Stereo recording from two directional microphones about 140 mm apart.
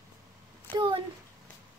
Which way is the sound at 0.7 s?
35° right (ahead or behind).